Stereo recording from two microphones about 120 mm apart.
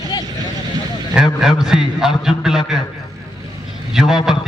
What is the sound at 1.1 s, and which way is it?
A man's voice, 5° right (ahead or behind).